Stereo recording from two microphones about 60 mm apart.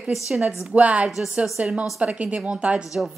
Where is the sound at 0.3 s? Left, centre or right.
Centre.